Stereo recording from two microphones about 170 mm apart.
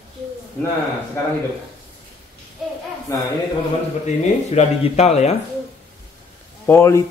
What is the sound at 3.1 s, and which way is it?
Speech, 20° left (ahead or behind).